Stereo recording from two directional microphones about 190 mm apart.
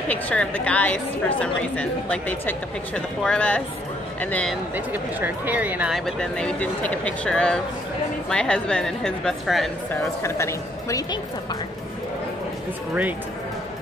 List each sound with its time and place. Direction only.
0.1 s a woman's voice: 10° left (ahead or behind)
4.7 s speech: 10° right (ahead or behind)
10.2 s a woman's voice: 15° left (ahead or behind)